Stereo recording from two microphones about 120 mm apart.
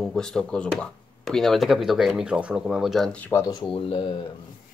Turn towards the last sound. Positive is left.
turn(degrees=45)  # may be behind; listen again after turning